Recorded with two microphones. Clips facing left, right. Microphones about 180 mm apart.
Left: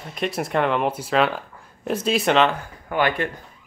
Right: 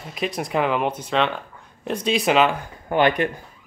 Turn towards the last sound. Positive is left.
turn(degrees=-20)  # may be behind; listen again after turning